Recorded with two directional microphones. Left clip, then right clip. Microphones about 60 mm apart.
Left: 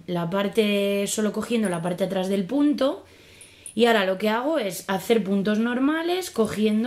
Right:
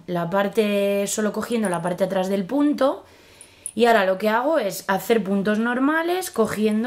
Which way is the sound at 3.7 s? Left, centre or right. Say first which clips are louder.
Right 3 dB; centre.